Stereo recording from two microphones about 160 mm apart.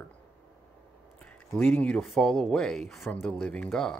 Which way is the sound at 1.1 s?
10° left (ahead or behind).